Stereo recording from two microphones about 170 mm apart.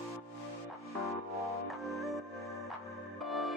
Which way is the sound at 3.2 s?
Centre (ahead or behind).